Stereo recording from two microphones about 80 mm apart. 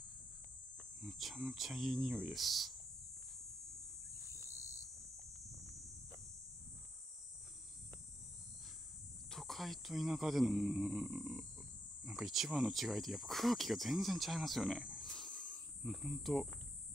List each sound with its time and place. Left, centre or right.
1.0 s speech: centre
4.1 s cricket: left
9.3 s speech: centre
15.0 s a sound: centre
15.8 s speech: centre